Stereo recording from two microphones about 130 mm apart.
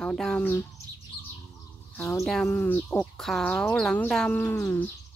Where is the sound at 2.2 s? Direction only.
5° left (ahead or behind).